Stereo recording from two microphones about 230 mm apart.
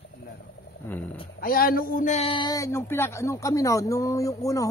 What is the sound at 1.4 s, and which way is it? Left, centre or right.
A man's voice, left.